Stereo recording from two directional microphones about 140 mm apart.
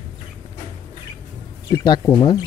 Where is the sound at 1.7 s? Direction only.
30° left (ahead or behind).